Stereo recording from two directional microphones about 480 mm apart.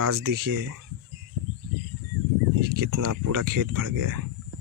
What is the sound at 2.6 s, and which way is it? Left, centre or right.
Speech, right.